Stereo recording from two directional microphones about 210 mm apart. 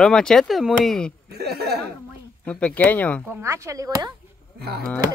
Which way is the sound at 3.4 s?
15° right (ahead or behind).